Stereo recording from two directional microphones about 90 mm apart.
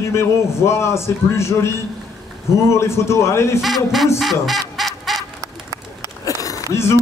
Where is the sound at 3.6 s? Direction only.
Centre (ahead or behind).